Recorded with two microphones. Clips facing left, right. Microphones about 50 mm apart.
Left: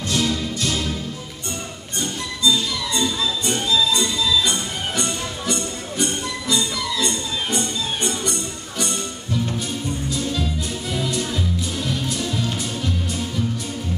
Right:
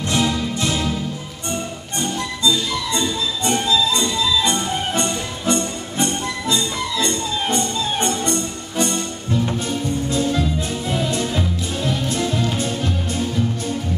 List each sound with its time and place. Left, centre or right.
0.1 s music: right
2.0 s music: right
10.0 s music: right